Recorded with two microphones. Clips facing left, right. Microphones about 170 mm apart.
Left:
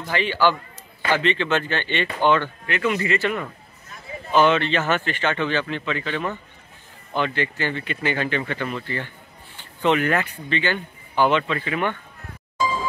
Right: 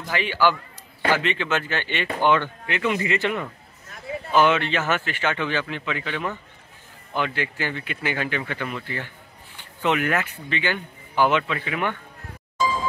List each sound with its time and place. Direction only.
0.1 s speech: 10° right (ahead or behind)